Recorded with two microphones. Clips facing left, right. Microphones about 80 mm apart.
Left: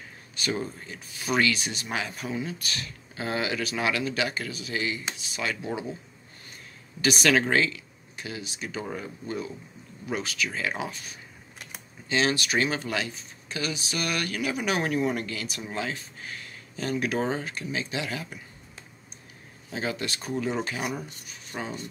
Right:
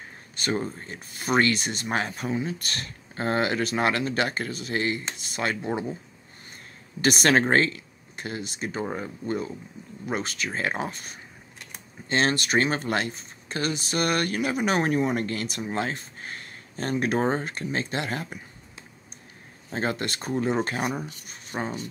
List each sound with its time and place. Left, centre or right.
0.4 s speech: right
7.0 s speech: right
15.2 s speech: right
19.7 s speech: right